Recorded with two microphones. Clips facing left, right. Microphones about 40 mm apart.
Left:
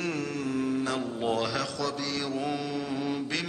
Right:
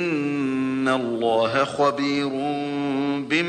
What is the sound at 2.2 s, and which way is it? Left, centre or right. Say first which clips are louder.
Mantra: right 6 dB; right.